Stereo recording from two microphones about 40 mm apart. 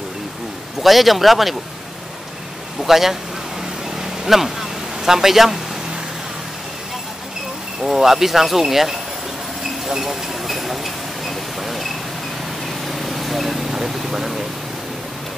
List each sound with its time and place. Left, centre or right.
0.8 s speech: centre
2.8 s speech: centre
4.3 s speech: centre
7.8 s speech: centre
9.6 s a sound: centre
12.8 s vehicle: centre
14.1 s a sound: centre